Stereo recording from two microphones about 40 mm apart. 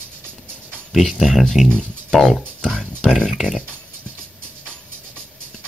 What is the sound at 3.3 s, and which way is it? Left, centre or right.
Speech, centre.